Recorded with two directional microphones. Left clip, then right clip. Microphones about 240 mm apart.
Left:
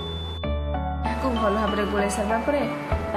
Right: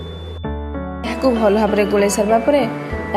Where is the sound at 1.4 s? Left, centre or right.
Right.